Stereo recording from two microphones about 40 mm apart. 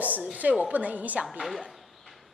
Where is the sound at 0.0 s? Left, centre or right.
Right.